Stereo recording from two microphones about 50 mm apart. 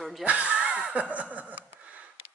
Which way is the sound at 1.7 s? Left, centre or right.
Right.